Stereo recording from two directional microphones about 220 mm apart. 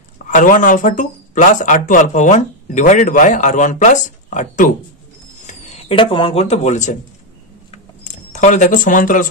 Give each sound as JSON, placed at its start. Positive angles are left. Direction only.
{"t": 0.3, "sound": "speech", "side_deg": 35}
{"t": 8.0, "sound": "speech", "side_deg": 35}